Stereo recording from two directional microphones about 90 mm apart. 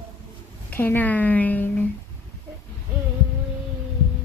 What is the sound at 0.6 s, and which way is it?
A woman's voice, 20° left (ahead or behind).